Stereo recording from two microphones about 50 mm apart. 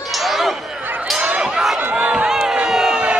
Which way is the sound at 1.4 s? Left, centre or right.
Centre.